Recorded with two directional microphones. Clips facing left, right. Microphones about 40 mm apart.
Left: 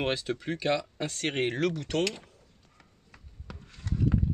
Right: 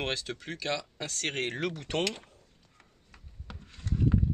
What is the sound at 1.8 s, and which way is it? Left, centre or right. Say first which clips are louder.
Speech: left 2 dB; right.